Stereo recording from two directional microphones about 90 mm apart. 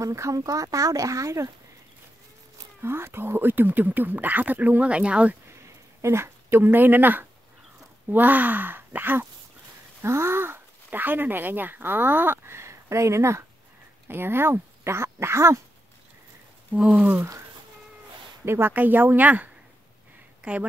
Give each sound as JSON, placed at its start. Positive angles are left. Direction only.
{"t": 0.0, "sound": "speech", "side_deg": -35}
{"t": 2.8, "sound": "speech", "side_deg": -25}
{"t": 6.0, "sound": "speech", "side_deg": -30}
{"t": 16.7, "sound": "speech", "side_deg": -10}
{"t": 18.4, "sound": "speech", "side_deg": -25}